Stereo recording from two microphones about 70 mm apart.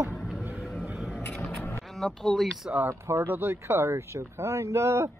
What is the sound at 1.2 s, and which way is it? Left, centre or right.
Vehicle, left.